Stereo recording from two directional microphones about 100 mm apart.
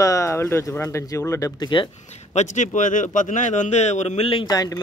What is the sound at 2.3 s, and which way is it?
Speech, 90° left.